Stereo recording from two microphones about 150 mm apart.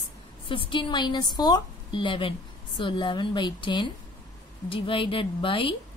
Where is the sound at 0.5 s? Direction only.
35° left (ahead or behind).